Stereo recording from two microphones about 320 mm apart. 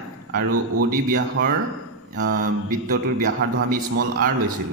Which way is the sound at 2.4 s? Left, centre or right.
Right.